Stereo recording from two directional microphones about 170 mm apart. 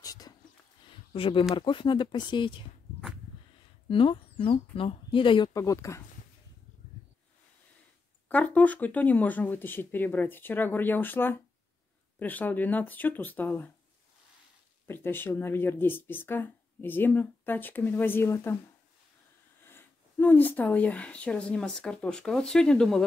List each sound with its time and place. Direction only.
0.0 s a sound: 20° left (ahead or behind)
1.1 s speech: 35° left (ahead or behind)
3.9 s speech: 30° left (ahead or behind)
5.5 s speech: 20° left (ahead or behind)
8.3 s speech: 10° left (ahead or behind)
14.9 s speech: 15° left (ahead or behind)
19.6 s speech: 10° left (ahead or behind)